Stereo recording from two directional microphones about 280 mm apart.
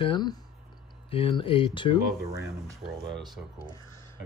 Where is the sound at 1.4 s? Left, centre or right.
Centre.